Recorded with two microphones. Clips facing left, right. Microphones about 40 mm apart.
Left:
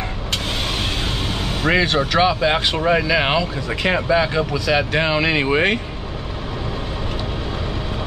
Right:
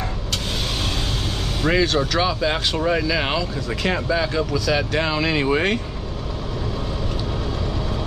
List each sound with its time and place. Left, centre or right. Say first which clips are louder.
1.6 s speech: left 1 dB; left